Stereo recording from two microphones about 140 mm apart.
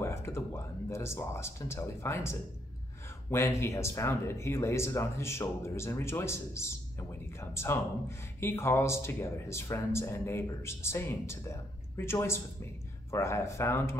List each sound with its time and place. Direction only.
0.0 s speech: 20° left (ahead or behind)